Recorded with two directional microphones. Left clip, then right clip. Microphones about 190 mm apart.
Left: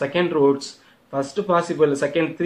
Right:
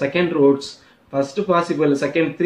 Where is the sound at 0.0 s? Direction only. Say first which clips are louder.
Right 2 dB; 45° left (ahead or behind).